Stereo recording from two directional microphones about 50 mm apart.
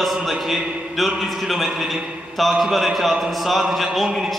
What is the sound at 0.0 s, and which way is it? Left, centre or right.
A man's voice, centre.